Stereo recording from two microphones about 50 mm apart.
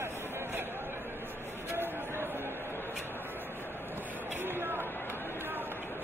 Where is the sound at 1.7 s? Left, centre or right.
Right.